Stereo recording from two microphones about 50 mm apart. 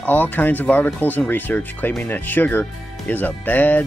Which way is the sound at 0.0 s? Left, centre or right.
Left.